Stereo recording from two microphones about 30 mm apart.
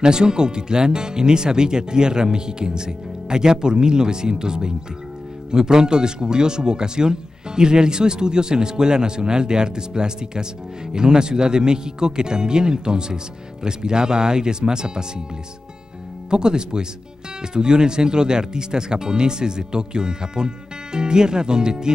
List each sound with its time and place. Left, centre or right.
0.0 s speech: right
16.3 s speech: right